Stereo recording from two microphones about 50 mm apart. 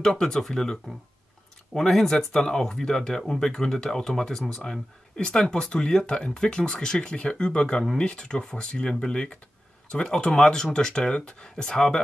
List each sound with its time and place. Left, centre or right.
0.0 s speech: centre